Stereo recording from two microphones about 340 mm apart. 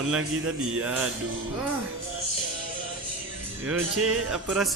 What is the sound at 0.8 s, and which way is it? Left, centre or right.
Speech, centre.